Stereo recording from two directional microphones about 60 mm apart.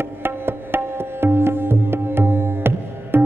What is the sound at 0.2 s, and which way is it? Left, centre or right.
Music, right.